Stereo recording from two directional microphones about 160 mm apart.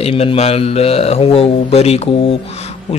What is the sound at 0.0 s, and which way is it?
Speech, 35° left (ahead or behind).